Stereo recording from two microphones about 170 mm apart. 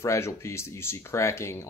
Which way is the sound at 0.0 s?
15° left (ahead or behind).